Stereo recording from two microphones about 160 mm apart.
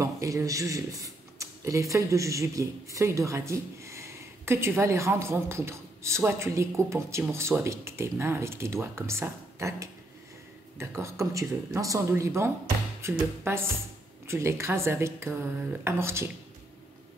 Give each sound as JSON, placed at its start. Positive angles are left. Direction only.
{"t": 0.0, "sound": "speech", "side_deg": -20}